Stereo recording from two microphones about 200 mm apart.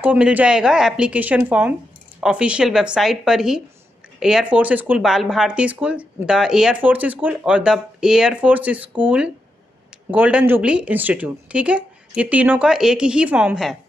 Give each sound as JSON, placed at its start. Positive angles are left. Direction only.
{"t": 0.0, "sound": "speech", "side_deg": -5}